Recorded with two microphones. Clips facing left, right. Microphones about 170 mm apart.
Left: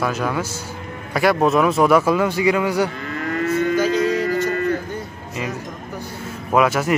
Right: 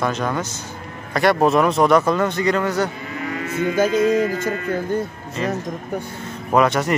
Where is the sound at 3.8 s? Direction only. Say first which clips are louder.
Right 2 dB; 50° right (ahead or behind).